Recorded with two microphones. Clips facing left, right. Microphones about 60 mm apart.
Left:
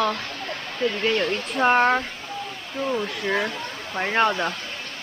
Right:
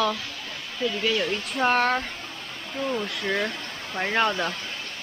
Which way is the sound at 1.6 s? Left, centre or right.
Centre.